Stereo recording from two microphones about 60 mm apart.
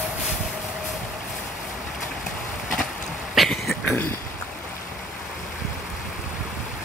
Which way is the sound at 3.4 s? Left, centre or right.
Centre.